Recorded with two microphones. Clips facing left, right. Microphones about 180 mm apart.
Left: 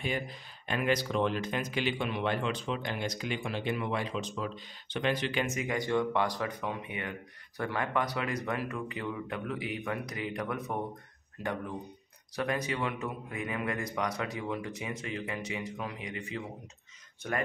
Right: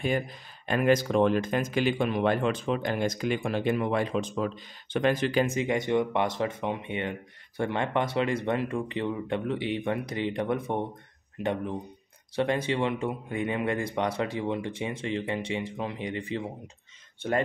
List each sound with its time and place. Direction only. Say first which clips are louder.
0.7 s speech: right 6 dB; 45° right (ahead or behind); by 17.4 s 30° right (ahead or behind)